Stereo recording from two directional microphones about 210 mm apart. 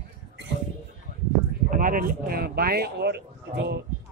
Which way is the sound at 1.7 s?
40° right (ahead or behind).